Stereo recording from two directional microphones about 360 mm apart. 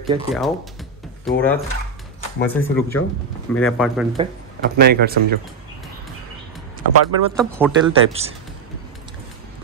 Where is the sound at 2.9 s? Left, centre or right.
Left.